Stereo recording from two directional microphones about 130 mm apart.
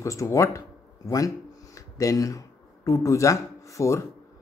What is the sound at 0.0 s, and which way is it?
A man's voice, 25° left (ahead or behind).